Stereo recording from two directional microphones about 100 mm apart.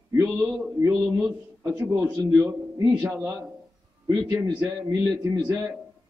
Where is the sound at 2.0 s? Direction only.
20° right (ahead or behind).